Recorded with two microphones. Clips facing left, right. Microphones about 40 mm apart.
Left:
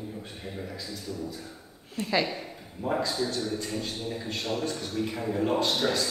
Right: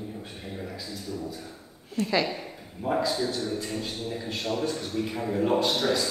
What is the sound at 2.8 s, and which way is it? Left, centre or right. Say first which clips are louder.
A man's voice: right 2 dB; centre.